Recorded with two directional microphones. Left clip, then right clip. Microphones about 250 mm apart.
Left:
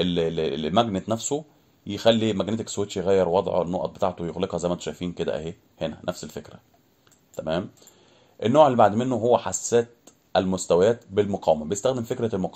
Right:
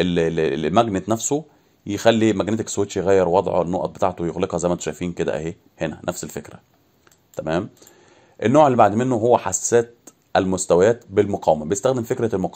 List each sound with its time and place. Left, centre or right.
0.0 s speech: right